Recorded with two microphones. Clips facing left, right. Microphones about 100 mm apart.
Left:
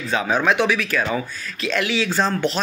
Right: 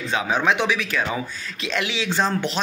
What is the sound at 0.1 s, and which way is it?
Speech, 15° right (ahead or behind).